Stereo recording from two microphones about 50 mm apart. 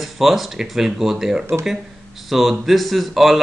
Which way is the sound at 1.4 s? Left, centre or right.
Right.